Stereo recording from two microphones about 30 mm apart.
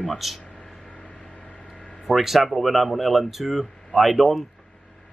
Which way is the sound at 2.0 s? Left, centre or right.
Centre.